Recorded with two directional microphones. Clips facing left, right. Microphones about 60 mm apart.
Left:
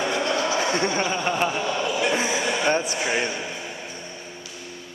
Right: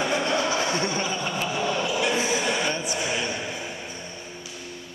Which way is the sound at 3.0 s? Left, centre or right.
Left.